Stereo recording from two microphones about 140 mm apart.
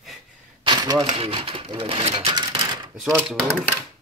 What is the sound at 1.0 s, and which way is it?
Speech, 45° right (ahead or behind).